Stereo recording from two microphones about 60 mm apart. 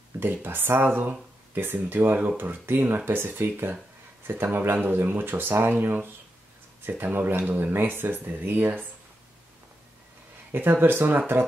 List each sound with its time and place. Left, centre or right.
0.2 s speech: right
10.5 s speech: right